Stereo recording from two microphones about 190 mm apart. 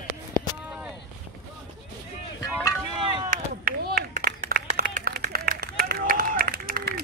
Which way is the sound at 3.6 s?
55° right (ahead or behind).